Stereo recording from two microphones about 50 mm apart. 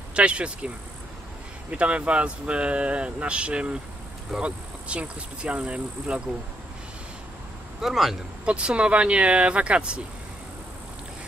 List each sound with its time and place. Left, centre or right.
0.1 s speech: right
7.8 s a man's voice: centre
8.5 s speech: right